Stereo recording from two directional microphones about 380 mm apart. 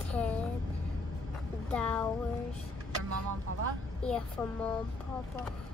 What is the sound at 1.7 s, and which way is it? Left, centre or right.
Speech, centre.